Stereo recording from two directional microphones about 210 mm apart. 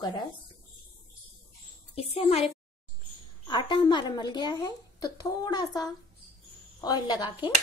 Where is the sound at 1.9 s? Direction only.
30° left (ahead or behind).